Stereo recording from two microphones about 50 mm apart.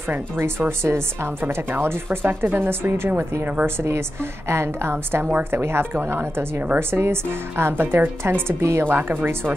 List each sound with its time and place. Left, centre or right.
0.1 s speech: right
1.7 s speech: right
2.0 s speech: right
3.6 s a woman's voice: right
8.5 s a woman's voice: right
8.8 s speech: right